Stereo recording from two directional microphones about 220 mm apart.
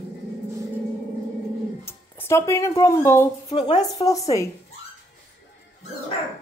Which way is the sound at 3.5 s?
30° left (ahead or behind).